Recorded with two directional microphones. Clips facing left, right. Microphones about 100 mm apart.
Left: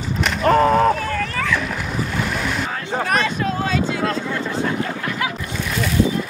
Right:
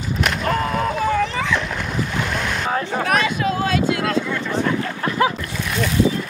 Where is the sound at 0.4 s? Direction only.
35° left (ahead or behind).